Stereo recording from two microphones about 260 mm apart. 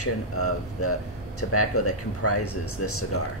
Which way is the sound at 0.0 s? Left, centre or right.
Left.